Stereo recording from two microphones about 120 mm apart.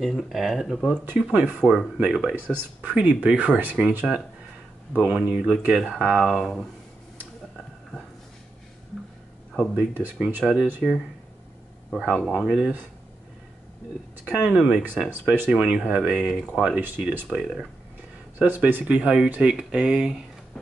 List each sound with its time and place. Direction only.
0.0 s speech: centre (ahead or behind)
1.3 s speech: 15° right (ahead or behind)
9.8 s speech: 15° right (ahead or behind)
14.2 s speech: 15° right (ahead or behind)
16.8 s speech: 15° right (ahead or behind)
18.4 s speech: 15° right (ahead or behind)